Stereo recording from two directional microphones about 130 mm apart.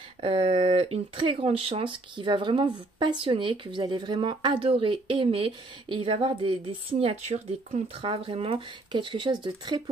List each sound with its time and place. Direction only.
0.2 s speech: 45° right (ahead or behind); by 7.8 s 60° right (ahead or behind)
8.0 s speech: 40° right (ahead or behind)